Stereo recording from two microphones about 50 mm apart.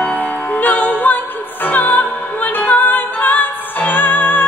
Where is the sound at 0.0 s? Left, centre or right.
Left.